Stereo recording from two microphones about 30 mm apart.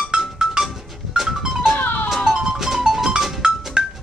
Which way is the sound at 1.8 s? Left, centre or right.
Left.